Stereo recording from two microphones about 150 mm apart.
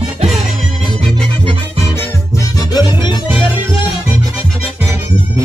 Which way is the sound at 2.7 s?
30° left (ahead or behind).